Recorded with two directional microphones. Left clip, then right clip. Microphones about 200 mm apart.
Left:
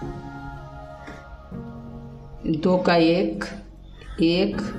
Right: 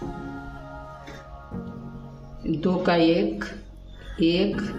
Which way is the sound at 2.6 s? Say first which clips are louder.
Left 3 dB; 25° left (ahead or behind).